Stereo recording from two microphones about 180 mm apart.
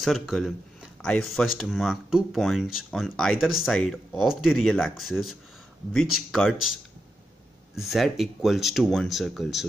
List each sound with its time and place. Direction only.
0.0 s speech: centre (ahead or behind)